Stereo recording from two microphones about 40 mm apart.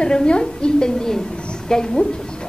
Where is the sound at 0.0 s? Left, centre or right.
Left.